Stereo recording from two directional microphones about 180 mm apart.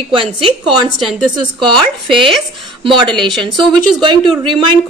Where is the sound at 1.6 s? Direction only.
30° right (ahead or behind).